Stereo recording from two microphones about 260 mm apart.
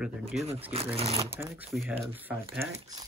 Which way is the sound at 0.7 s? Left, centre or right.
Right.